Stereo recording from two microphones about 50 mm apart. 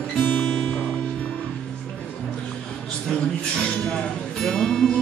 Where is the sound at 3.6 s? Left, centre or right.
Left.